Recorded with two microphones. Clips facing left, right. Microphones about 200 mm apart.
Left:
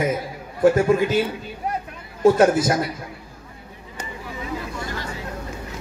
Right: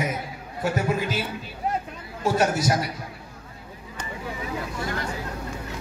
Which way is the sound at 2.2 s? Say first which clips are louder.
Left 7 dB; 50° left (ahead or behind).